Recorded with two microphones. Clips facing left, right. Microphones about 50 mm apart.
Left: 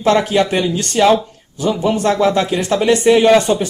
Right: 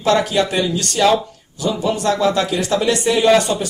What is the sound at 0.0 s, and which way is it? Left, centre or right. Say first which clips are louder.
Speech: left 2 dB; left.